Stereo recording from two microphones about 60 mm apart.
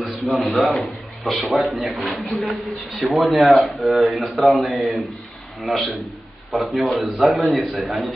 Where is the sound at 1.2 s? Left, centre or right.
Centre.